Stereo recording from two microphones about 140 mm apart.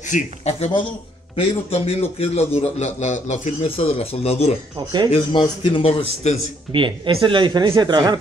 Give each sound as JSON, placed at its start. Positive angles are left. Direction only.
{"t": 0.1, "sound": "a man's voice", "side_deg": 55}
{"t": 1.3, "sound": "a man's voice", "side_deg": 40}
{"t": 4.7, "sound": "speech", "side_deg": -30}
{"t": 5.1, "sound": "speech", "side_deg": 35}
{"t": 6.2, "sound": "a man's voice", "side_deg": 55}
{"t": 6.7, "sound": "speech", "side_deg": -35}